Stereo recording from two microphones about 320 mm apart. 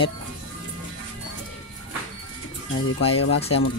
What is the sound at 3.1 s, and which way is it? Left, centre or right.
Speech, left.